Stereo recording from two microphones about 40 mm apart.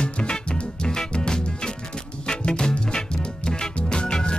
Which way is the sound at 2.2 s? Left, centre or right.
Left.